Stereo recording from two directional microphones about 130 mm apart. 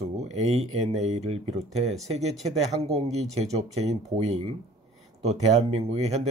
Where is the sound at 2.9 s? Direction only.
55° right (ahead or behind).